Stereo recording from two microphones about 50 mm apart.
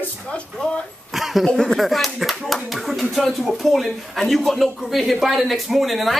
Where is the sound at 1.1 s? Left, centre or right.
Centre.